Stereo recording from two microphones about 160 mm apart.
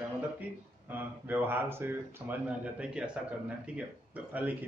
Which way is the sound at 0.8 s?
10° right (ahead or behind).